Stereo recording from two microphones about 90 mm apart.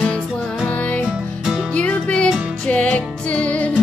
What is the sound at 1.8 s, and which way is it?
Music, 15° left (ahead or behind).